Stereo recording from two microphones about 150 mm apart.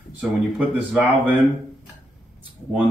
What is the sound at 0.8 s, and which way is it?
Speech, 10° right (ahead or behind).